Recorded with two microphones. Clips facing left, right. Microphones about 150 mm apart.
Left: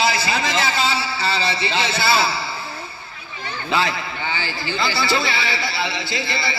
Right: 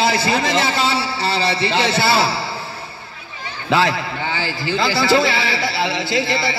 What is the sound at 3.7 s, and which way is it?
A man's voice, 90° right.